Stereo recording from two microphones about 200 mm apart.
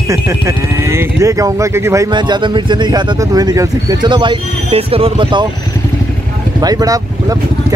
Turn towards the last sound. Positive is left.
turn(degrees=-20)  # may be behind; listen again after turning